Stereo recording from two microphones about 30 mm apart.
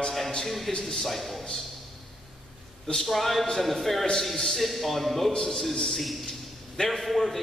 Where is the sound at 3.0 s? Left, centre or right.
Centre.